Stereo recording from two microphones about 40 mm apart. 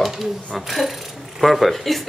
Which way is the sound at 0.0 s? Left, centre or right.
Centre.